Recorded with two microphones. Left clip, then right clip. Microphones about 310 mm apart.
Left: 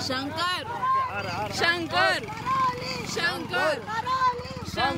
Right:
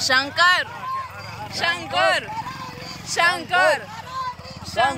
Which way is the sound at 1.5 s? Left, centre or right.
Centre.